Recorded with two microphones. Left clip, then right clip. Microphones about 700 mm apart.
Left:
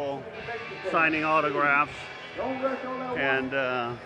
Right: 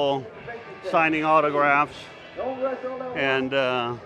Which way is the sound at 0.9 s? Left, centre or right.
Right.